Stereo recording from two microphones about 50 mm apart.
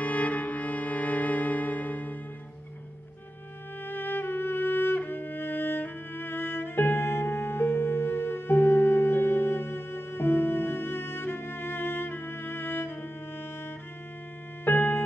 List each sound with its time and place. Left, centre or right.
0.0 s music: left
3.8 s music: left
14.6 s music: left